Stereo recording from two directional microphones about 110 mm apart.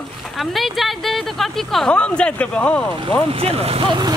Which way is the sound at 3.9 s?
40° right (ahead or behind).